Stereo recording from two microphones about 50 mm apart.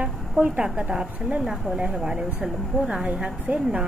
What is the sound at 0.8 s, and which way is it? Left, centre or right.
A woman's voice, right.